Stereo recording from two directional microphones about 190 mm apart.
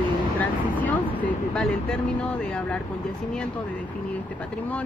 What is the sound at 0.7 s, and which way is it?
Speech, 10° left (ahead or behind).